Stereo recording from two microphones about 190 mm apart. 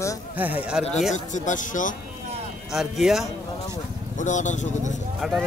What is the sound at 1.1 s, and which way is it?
Speech, 40° left (ahead or behind).